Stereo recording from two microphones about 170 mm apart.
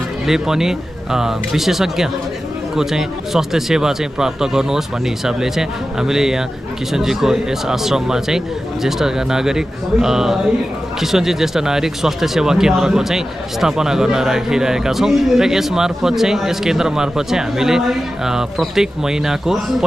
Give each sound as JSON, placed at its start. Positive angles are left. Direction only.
{"t": 0.3, "sound": "speech", "side_deg": -5}